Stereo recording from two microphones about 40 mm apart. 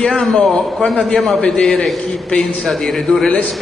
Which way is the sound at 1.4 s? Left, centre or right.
Left.